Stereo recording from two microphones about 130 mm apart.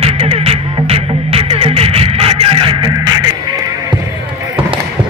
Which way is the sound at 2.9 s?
30° right (ahead or behind).